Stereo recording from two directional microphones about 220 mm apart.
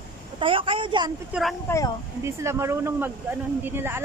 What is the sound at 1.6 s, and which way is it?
Speech, 15° left (ahead or behind).